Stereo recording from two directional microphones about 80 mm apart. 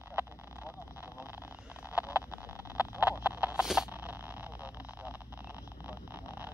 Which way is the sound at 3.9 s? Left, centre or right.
Right.